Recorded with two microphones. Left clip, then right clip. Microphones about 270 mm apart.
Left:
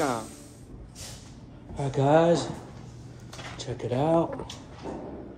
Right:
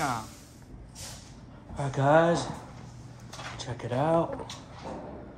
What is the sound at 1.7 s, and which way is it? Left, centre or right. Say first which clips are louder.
Speech: left 1 dB; right.